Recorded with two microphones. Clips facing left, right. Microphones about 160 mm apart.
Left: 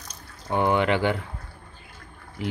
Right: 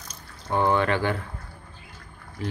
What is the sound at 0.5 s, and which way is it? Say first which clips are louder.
Speech: left 1 dB; 15° left (ahead or behind).